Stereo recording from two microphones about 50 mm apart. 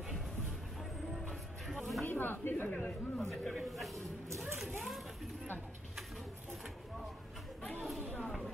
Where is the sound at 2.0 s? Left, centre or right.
Left.